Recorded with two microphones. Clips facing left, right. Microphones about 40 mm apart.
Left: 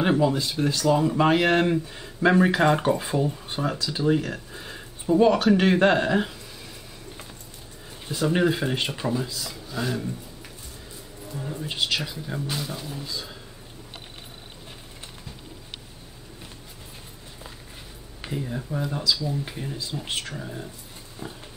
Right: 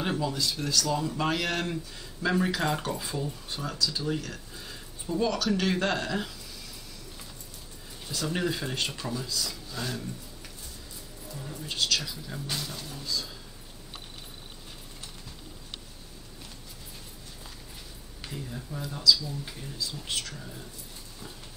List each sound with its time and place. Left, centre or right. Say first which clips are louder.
0.0 s speech: left 8 dB; left
8.1 s speech: left 8 dB; left
11.2 s speech: left 6 dB; left
12.4 s speech: left 4 dB; centre
18.2 s speech: left 8 dB; left